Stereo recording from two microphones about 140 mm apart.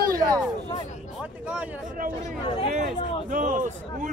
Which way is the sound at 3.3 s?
70° right (ahead or behind).